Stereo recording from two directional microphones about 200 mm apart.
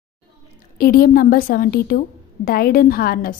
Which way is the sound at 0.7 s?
45° left (ahead or behind).